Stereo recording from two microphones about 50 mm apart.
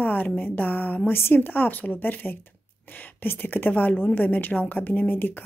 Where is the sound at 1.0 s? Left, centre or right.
Left.